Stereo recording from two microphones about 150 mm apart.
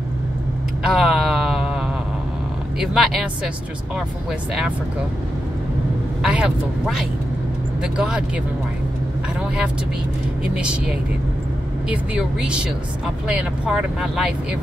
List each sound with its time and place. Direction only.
0.8 s a sound: centre (ahead or behind)
2.8 s speech: centre (ahead or behind)
6.2 s speech: 5° right (ahead or behind)
10.5 s speech: 5° right (ahead or behind)